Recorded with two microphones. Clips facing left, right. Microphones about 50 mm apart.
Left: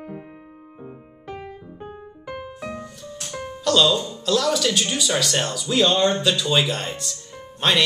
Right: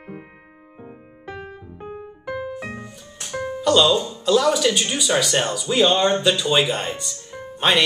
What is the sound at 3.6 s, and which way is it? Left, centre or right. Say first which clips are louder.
Speech: right 2 dB; centre.